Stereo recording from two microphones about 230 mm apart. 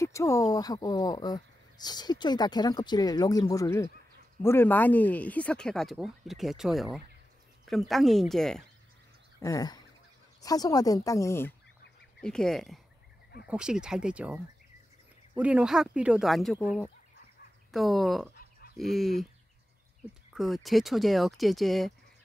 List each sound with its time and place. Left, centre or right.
0.0 s speech: centre
9.4 s speech: centre
20.3 s speech: centre